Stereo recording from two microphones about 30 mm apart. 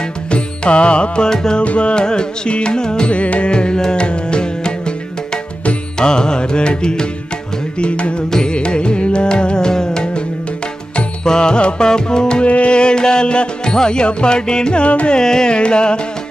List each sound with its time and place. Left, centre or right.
0.3 s music: left
1.2 s music: left
1.6 s music: left
3.1 s music: left
3.5 s music: left
7.8 s music: left
11.2 s music: left
12.4 s music: left
14.8 s music: left
15.1 s music: left